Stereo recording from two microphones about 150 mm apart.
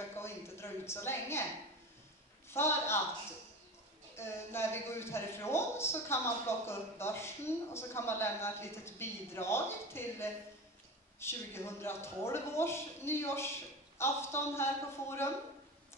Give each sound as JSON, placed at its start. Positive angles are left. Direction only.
{"t": 0.2, "sound": "a sound", "side_deg": 15}
{"t": 2.5, "sound": "a man's voice", "side_deg": 15}
{"t": 4.2, "sound": "a man's voice", "side_deg": 15}